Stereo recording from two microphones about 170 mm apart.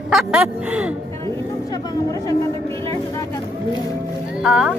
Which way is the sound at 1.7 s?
20° left (ahead or behind).